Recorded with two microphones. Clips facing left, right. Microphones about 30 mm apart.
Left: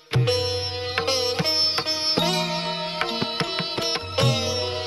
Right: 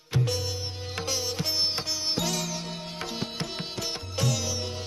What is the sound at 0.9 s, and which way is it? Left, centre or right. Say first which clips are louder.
Sitar: left 7 dB; left.